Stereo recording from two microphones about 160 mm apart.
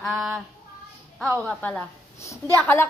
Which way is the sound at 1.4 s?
5° left (ahead or behind).